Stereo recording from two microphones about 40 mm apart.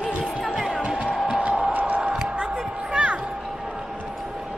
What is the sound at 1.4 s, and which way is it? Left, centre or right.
Music, right.